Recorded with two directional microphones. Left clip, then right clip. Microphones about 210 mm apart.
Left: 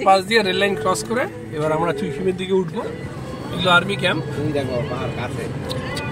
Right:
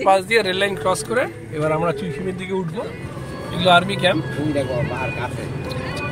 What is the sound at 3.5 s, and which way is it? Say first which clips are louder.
Speech: right 1 dB; 5° left (ahead or behind).